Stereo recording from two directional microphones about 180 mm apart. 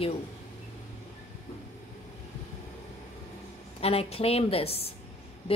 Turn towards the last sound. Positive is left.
turn(degrees=35)  # may be behind; listen again after turning